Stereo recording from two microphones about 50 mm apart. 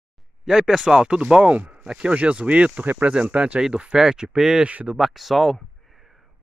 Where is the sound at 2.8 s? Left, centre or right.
Right.